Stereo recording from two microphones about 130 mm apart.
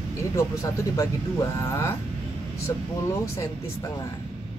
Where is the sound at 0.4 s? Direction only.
25° left (ahead or behind).